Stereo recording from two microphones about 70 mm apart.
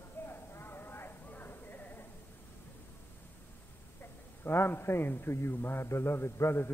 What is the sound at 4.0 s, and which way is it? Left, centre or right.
A man's voice, left.